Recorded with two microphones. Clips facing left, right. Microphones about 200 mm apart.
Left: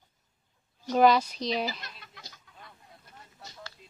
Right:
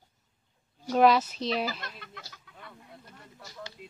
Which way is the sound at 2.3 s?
65° right (ahead or behind).